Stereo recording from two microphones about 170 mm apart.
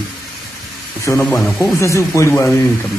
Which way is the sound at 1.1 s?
10° left (ahead or behind).